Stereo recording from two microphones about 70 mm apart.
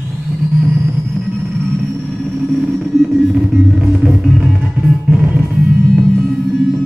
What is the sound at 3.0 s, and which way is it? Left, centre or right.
Music, centre.